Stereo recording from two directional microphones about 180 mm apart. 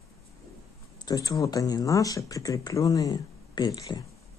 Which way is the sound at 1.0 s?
20° left (ahead or behind).